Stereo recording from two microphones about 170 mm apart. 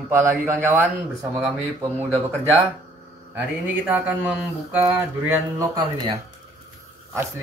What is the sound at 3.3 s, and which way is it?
A man's voice, 10° right (ahead or behind).